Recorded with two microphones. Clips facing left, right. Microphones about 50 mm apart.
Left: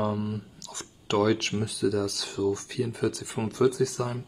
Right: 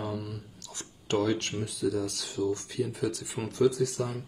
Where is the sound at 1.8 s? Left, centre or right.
Left.